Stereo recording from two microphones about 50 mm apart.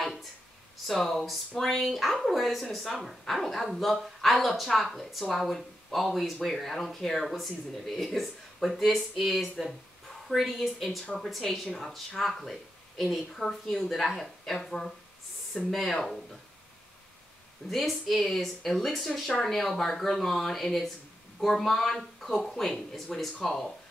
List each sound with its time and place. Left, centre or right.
0.8 s speech: centre
17.6 s speech: centre